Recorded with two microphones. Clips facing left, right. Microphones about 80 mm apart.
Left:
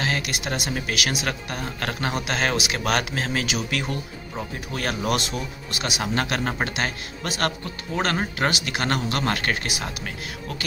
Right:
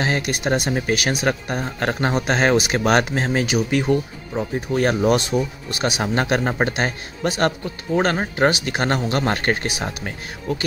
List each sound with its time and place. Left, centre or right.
0.0 s speech: right
8.4 s speech: right